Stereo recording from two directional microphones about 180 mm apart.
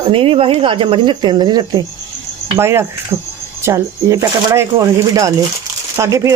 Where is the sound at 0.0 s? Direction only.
30° right (ahead or behind).